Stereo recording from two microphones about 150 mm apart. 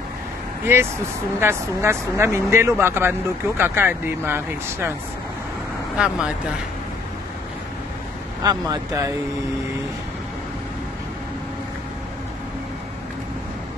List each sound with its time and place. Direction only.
0.7 s speech: 15° right (ahead or behind)
5.9 s speech: 5° right (ahead or behind)
8.4 s speech: 25° right (ahead or behind)